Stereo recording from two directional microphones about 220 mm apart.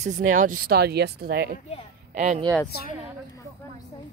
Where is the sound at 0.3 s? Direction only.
35° right (ahead or behind).